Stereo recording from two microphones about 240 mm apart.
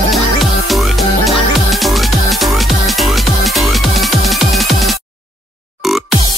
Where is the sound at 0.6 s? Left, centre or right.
Centre.